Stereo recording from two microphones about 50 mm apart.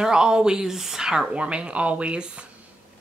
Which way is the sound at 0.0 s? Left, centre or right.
Centre.